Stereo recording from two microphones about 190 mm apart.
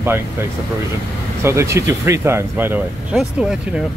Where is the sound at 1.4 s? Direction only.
15° right (ahead or behind).